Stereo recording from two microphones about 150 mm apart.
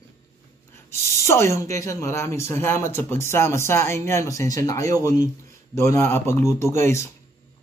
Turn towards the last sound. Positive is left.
turn(degrees=20)  # may be behind; listen again after turning